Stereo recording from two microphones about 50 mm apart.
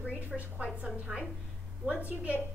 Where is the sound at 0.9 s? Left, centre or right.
Centre.